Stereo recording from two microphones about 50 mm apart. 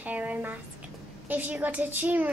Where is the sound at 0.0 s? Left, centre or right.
Right.